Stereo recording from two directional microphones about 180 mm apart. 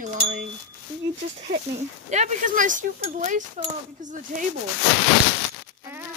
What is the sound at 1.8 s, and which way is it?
Speech, 40° right (ahead or behind).